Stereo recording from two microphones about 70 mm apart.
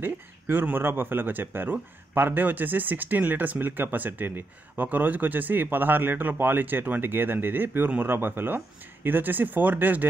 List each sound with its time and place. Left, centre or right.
0.0 s speech: right